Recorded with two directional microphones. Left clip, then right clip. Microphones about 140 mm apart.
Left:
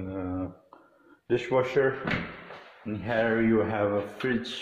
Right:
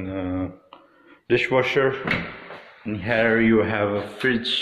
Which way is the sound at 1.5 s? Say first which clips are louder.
Right 3 dB; 10° left (ahead or behind).